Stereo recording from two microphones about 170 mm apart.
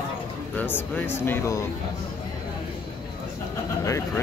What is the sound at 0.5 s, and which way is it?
Speech, 10° left (ahead or behind).